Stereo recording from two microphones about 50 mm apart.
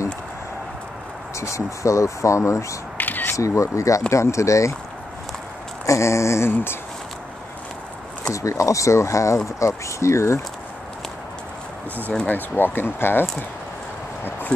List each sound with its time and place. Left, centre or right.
1.3 s speech: left
3.0 s single-lens reflex camera: left
3.3 s speech: left
5.9 s speech: left
6.5 s speech: left
8.2 s speech: left
12.3 s speech: left